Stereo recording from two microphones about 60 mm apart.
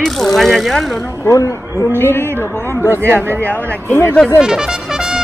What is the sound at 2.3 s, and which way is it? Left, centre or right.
Speech, right.